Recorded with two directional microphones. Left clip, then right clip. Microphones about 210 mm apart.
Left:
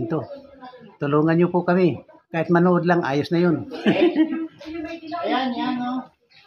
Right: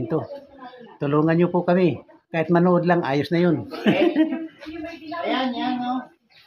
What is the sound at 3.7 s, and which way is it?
Speech, 20° right (ahead or behind).